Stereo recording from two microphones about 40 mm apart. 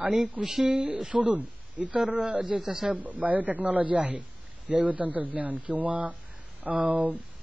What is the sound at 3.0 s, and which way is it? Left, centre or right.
Speech, right.